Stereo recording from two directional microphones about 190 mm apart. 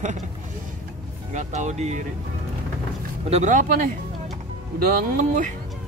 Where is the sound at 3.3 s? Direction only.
40° right (ahead or behind).